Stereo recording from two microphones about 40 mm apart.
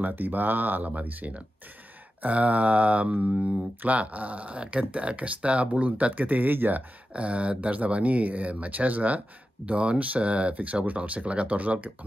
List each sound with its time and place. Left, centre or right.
0.0 s speech: right
7.2 s speech: right